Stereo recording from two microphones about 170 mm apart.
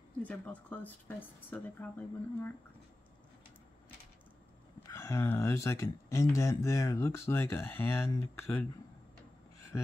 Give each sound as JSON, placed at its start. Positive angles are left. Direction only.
{"t": 0.2, "sound": "speech", "side_deg": 10}
{"t": 4.8, "sound": "speech", "side_deg": 15}